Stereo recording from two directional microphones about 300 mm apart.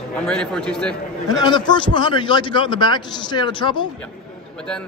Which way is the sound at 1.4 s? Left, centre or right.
Centre.